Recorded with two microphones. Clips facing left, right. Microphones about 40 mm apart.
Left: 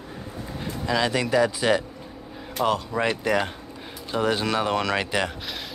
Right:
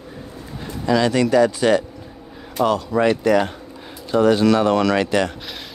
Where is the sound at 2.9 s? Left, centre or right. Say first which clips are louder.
Right 7 dB; centre.